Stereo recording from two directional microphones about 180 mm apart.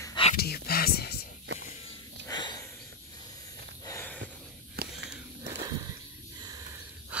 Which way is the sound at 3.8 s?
15° left (ahead or behind).